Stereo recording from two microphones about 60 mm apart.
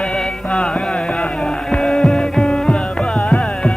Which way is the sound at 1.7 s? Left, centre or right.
Centre.